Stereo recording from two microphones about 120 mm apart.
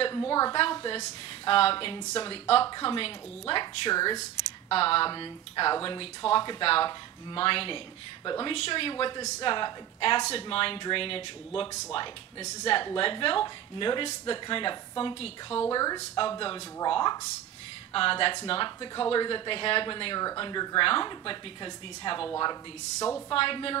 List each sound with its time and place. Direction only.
0.1 s a woman's voice: 30° left (ahead or behind); by 2.6 s 50° left (ahead or behind)
2.6 s speech: 40° left (ahead or behind)
4.6 s a woman's voice: 50° left (ahead or behind)
15.7 s speech: 30° left (ahead or behind)
16.2 s a woman's voice: 45° left (ahead or behind)
16.9 s speech: 35° left (ahead or behind)
17.9 s a woman's voice: 45° left (ahead or behind); by 23.2 s 30° left (ahead or behind)
23.3 s a woman's voice: 50° left (ahead or behind)